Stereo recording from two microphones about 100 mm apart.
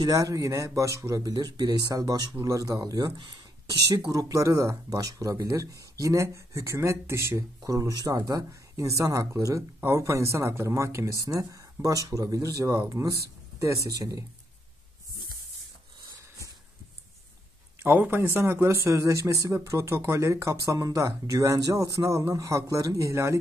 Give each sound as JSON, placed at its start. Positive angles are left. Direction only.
{"t": 0.0, "sound": "speech", "side_deg": -35}
{"t": 17.8, "sound": "speech", "side_deg": -20}